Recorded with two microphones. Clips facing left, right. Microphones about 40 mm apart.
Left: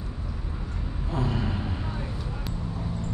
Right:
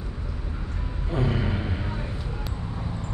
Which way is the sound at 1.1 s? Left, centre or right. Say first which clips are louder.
Right 2 dB; centre.